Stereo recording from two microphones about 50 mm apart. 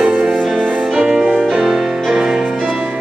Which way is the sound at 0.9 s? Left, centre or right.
Centre.